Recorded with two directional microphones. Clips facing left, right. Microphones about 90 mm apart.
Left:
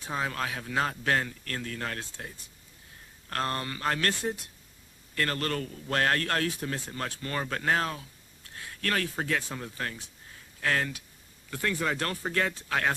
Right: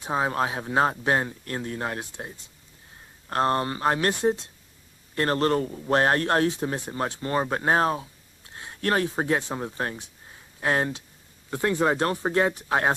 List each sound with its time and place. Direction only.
0.0 s a man's voice: 25° right (ahead or behind)